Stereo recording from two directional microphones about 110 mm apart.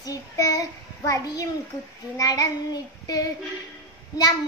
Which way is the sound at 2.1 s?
35° left (ahead or behind).